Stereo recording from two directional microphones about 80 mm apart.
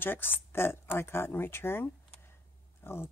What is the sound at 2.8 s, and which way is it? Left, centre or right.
Dog, left.